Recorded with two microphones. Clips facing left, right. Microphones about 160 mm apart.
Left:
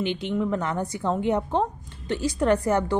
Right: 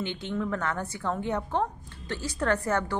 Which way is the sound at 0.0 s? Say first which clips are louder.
Left 5 dB; 15° left (ahead or behind).